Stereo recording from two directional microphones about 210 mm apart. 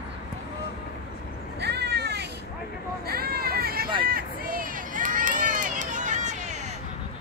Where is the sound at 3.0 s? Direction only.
45° right (ahead or behind).